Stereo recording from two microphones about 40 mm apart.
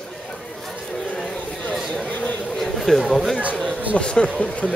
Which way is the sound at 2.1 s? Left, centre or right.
Left.